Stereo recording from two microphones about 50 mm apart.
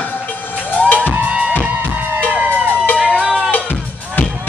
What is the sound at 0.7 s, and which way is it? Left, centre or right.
Music, left.